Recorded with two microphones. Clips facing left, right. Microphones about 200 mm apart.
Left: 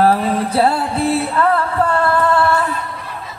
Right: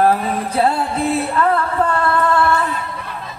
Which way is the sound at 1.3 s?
30° left (ahead or behind).